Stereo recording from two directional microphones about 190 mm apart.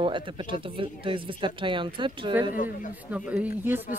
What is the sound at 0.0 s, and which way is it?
Speech, 25° right (ahead or behind).